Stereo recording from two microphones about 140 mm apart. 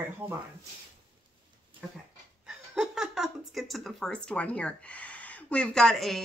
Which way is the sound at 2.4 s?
5° right (ahead or behind).